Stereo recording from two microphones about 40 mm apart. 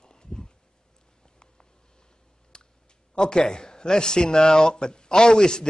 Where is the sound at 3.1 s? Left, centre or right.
Centre.